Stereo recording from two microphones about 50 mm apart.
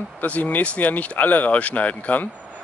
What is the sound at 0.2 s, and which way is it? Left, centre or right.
Speech, left.